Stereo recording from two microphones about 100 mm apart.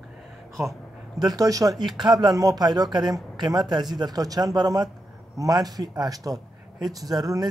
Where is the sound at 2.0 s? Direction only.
45° right (ahead or behind).